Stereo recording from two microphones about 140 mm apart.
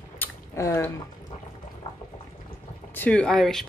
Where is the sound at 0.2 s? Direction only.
20° left (ahead or behind).